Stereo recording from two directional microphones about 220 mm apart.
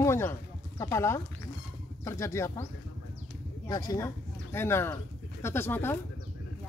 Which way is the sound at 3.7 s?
15° left (ahead or behind).